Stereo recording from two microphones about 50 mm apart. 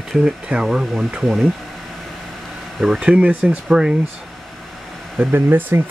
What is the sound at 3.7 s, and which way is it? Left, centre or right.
Speech, centre.